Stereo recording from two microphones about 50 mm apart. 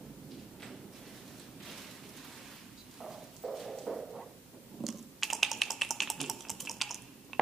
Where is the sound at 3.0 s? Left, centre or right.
Centre.